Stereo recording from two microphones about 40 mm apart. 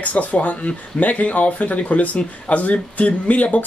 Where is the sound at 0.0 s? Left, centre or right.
Left.